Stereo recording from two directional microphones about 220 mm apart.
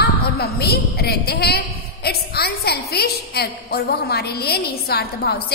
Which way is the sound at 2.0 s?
45° left (ahead or behind).